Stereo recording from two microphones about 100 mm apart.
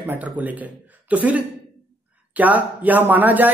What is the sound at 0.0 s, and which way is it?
A man's voice, 15° right (ahead or behind).